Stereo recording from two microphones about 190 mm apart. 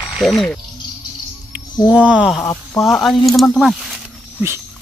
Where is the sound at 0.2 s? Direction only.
Centre (ahead or behind).